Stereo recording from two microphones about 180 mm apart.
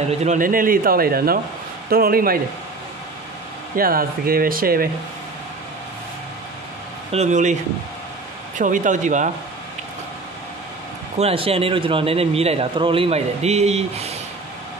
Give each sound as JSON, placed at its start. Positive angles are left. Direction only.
{"t": 0.2, "sound": "speech", "side_deg": -45}
{"t": 3.7, "sound": "speech", "side_deg": -55}
{"t": 7.1, "sound": "a man's voice", "side_deg": -40}
{"t": 8.5, "sound": "speech", "side_deg": -45}
{"t": 11.1, "sound": "a man's voice", "side_deg": -35}